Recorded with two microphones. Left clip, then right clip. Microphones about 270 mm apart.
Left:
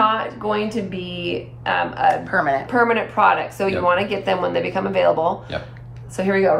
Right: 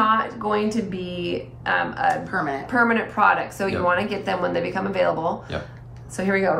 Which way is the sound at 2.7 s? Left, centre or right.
Centre.